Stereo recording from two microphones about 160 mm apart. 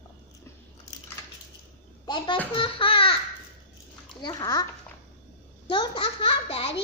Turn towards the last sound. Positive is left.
turn(degrees=40)  # may be behind; listen again after turning